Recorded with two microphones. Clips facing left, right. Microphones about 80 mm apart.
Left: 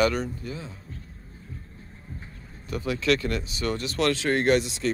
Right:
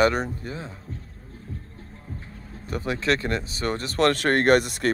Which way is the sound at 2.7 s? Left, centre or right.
Right.